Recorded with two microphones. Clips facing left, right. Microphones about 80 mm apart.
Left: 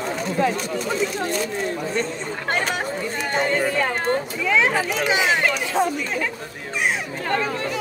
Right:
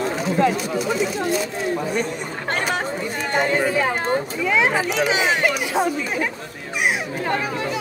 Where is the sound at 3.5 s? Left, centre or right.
Centre.